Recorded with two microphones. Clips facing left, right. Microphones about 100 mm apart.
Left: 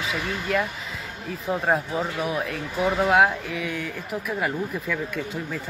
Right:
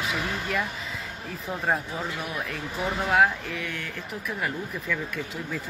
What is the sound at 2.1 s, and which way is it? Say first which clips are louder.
Speech: left 6 dB; centre (ahead or behind).